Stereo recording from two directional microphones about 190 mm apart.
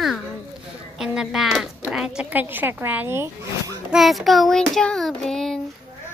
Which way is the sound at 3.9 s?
Centre (ahead or behind).